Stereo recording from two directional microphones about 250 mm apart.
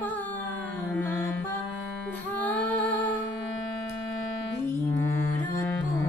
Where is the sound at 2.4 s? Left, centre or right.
Centre.